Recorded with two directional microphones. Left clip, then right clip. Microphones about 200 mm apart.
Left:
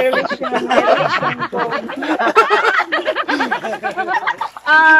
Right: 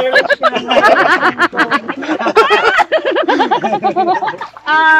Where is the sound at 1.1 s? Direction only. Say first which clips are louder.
Right 7 dB; 50° right (ahead or behind).